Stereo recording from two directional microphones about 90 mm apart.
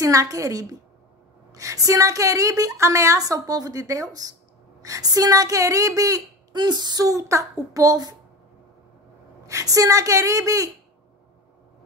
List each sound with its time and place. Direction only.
0.0 s a woman's voice: 35° right (ahead or behind); by 7.1 s 50° right (ahead or behind)
7.1 s a woman's voice: 35° right (ahead or behind)
9.5 s a woman's voice: 40° right (ahead or behind)